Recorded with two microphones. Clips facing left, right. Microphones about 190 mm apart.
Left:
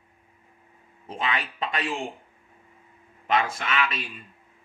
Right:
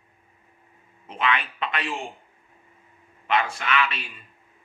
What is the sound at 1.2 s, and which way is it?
Speech, 35° left (ahead or behind).